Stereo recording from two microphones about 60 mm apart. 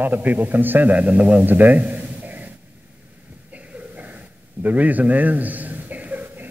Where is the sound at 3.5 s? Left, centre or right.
Right.